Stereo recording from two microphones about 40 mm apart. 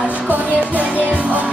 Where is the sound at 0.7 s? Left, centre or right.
Right.